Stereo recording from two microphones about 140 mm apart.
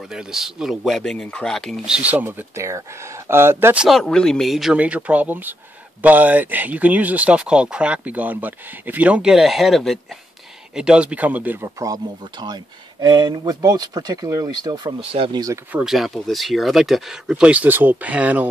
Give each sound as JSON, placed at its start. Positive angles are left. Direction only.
{"t": 0.1, "sound": "speech", "side_deg": -5}
{"t": 2.0, "sound": "speech", "side_deg": -10}
{"t": 3.8, "sound": "speech", "side_deg": 0}
{"t": 15.7, "sound": "speech", "side_deg": -5}